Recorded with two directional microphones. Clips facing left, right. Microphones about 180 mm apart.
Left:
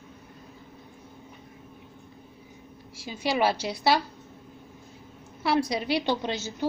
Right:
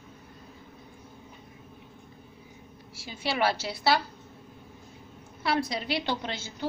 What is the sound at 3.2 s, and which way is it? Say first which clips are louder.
Speech: left 3 dB; 20° left (ahead or behind).